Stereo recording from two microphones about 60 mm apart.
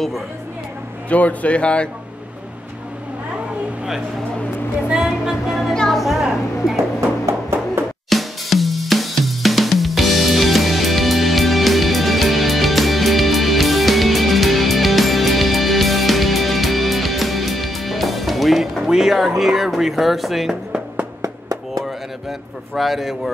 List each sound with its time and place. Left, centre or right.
1.0 s speech: left
4.8 s speech: centre
5.9 s a woman's voice: centre
7.0 s a sound: right
8.1 s drum: centre
21.2 s a sound: right
22.8 s a woman's voice: centre